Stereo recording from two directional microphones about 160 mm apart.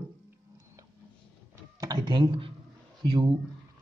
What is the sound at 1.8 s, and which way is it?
Speech, 25° right (ahead or behind).